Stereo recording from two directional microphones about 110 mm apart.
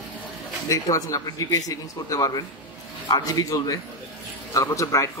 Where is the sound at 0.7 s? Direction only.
30° left (ahead or behind).